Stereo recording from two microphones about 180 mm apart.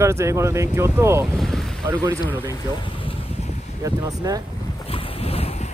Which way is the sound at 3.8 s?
20° right (ahead or behind).